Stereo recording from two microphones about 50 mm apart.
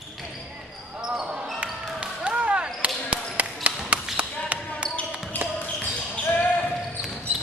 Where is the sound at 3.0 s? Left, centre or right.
Right.